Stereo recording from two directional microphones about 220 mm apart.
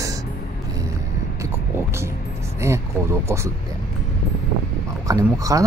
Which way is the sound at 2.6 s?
10° right (ahead or behind).